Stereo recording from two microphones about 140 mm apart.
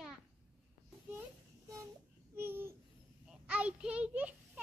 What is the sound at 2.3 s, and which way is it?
A child's voice, 15° right (ahead or behind).